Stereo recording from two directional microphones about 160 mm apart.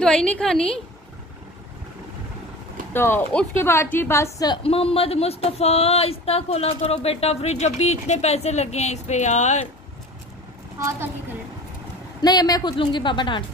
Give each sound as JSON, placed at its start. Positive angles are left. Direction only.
{"t": 0.0, "sound": "a woman's voice", "side_deg": 5}
{"t": 2.9, "sound": "a woman's voice", "side_deg": 15}
{"t": 4.6, "sound": "speech", "side_deg": 35}
{"t": 12.2, "sound": "a woman's voice", "side_deg": 25}